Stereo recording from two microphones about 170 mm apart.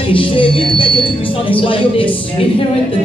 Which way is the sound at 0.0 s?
30° left (ahead or behind).